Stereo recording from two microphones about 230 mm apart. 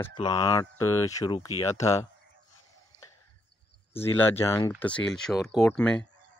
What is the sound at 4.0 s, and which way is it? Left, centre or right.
Speech, centre.